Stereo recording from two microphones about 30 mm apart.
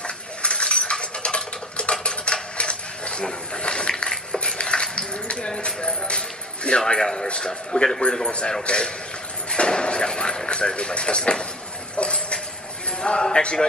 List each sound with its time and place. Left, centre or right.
0.0 s a sound: left
4.9 s music: left
6.9 s speech: left
7.2 s a man's voice: left
9.5 s vehicle: left
12.0 s a sound: left
13.0 s speech: left